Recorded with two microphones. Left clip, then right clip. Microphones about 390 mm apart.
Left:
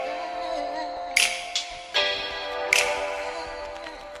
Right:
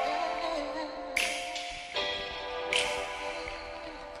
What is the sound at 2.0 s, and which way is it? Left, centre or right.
Music, left.